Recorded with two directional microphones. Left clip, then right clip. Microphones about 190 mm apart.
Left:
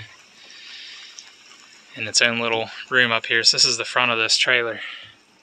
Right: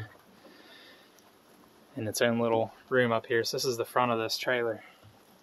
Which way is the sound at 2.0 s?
20° right (ahead or behind).